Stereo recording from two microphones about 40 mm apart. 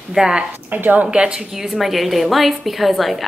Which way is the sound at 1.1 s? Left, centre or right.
Right.